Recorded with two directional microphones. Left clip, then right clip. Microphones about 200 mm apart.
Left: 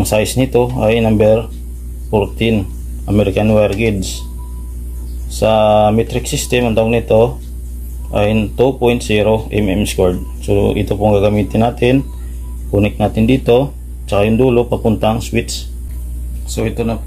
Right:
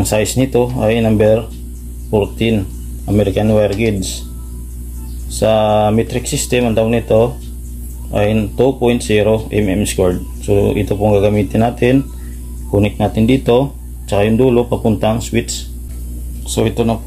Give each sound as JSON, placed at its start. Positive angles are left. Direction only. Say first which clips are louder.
{"t": 0.0, "sound": "speech", "louder": "left 1 dB", "side_deg": 0}
{"t": 5.3, "sound": "speech", "louder": "left 2 dB", "side_deg": 0}
{"t": 16.4, "sound": "speech", "louder": "right 3 dB", "side_deg": -15}